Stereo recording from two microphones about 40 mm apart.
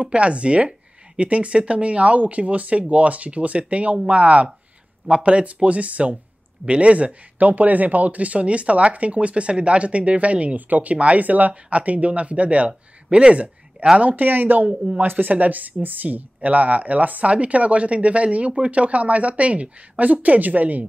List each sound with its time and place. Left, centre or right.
0.0 s speech: right